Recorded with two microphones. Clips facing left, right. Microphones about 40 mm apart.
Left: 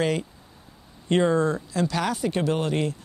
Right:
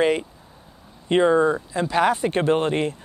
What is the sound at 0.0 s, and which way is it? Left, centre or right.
Speech, right.